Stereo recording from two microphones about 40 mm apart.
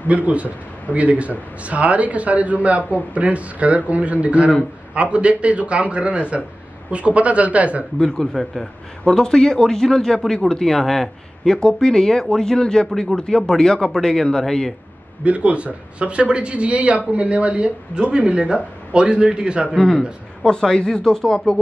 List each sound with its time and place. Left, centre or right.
0.1 s a man's voice: right
8.0 s a man's voice: centre
15.2 s speech: right
20.4 s a man's voice: centre